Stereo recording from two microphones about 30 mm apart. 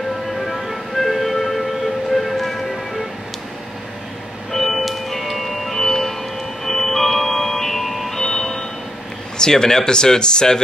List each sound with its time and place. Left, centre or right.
0.5 s music: centre
4.5 s music: centre
8.2 s music: centre
9.4 s speech: left